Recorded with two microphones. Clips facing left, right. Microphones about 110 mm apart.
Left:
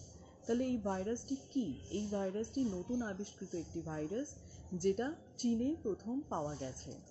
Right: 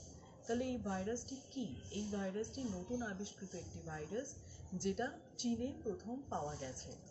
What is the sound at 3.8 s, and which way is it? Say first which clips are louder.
Speech: even; 45° left (ahead or behind).